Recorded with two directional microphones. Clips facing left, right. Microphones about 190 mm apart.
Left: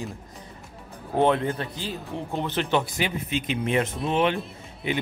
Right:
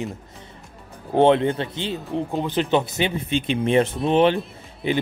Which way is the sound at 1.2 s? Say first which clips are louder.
Right 5 dB; 25° right (ahead or behind).